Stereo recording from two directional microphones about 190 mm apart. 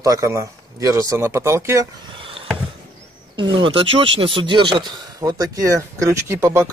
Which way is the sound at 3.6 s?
30° right (ahead or behind).